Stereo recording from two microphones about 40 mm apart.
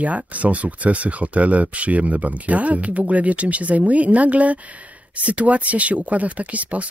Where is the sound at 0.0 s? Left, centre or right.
Right.